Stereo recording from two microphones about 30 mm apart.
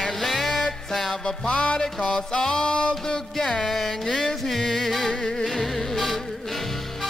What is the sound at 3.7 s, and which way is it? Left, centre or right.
Music, centre.